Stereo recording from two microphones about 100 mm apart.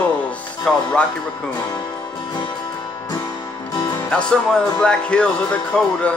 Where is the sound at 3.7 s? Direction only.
45° left (ahead or behind).